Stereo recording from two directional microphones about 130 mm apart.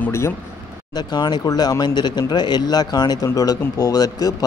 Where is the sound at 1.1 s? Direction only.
35° left (ahead or behind).